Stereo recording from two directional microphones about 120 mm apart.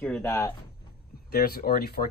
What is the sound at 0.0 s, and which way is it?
Speech, 15° left (ahead or behind).